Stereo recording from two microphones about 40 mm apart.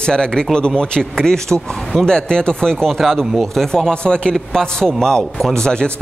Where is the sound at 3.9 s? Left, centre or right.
Left.